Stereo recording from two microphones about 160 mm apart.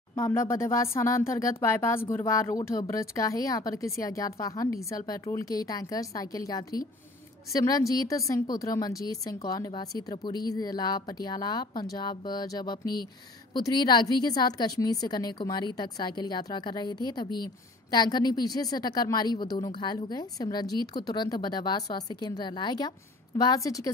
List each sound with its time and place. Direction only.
0.1 s a woman's voice: 15° left (ahead or behind)